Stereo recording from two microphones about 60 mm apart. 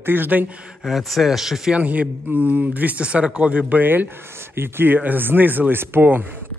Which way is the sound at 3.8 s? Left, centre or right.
Right.